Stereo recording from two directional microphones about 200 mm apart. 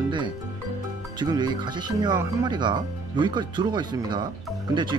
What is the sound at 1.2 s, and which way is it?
Speech, 20° right (ahead or behind).